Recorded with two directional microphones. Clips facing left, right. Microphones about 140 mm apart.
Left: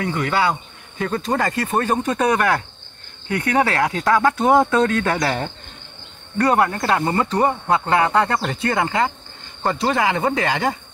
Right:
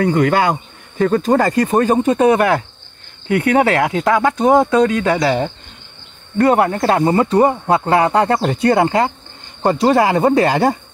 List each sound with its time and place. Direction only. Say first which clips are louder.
0.0 s speech: right 6 dB; 45° right (ahead or behind); by 5.5 s 10° right (ahead or behind)
6.6 s speech: right 5 dB; 25° right (ahead or behind)
7.7 s speech: right 1 dB; 30° right (ahead or behind)